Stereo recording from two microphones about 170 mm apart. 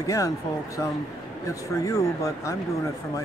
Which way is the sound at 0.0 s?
20° left (ahead or behind).